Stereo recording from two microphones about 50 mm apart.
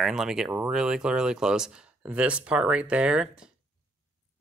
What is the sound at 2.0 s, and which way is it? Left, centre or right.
Speech, right.